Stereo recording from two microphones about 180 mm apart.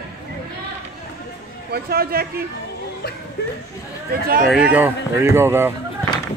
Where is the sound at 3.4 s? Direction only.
65° left (ahead or behind).